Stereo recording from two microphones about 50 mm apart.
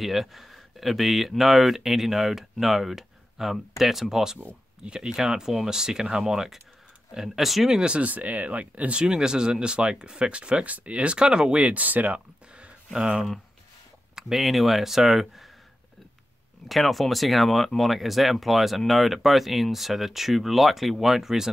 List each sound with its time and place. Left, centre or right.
0.0 s speech: centre
7.8 s speech: centre
8.1 s speech: right
14.1 s speech: centre
16.6 s speech: centre